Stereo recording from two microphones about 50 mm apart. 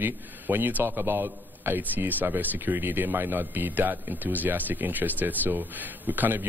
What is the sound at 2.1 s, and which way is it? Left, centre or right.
Speech, right.